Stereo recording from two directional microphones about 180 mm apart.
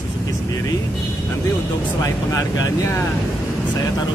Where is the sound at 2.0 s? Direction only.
20° left (ahead or behind).